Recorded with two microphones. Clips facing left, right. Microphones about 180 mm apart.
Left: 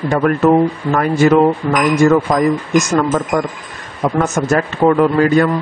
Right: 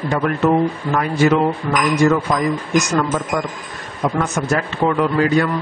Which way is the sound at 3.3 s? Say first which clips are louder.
Left 4 dB; 40° left (ahead or behind).